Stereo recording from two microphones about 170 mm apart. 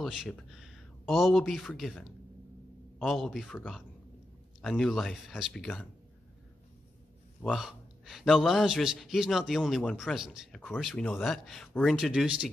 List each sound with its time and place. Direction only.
0.0 s a man's voice: centre (ahead or behind)
7.4 s a man's voice: centre (ahead or behind)